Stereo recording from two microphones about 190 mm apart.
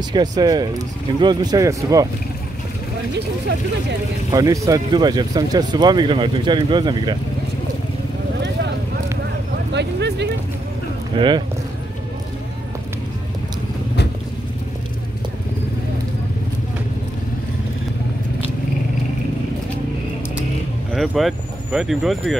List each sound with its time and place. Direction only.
0.4 s speech: 20° right (ahead or behind)
4.3 s speech: 20° right (ahead or behind)
9.7 s a sound: 65° right (ahead or behind)
11.1 s speech: 25° right (ahead or behind)
20.9 s speech: centre (ahead or behind)